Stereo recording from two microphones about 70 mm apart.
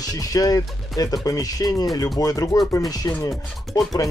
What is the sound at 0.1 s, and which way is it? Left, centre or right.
Speech, left.